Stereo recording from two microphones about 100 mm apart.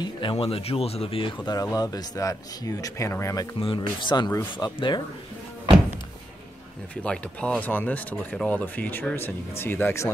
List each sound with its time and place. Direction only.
0.0 s speech: 60° left (ahead or behind)
1.4 s speech: 40° left (ahead or behind)
3.6 s speech: 55° left (ahead or behind)
7.0 s speech: 10° left (ahead or behind)